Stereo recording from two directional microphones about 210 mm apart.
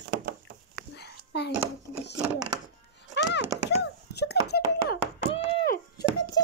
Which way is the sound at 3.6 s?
50° left (ahead or behind).